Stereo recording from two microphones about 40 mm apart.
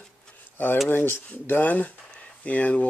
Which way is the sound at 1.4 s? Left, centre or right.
Left.